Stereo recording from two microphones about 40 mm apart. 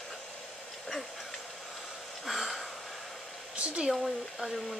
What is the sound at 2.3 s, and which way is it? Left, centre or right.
Speech, centre.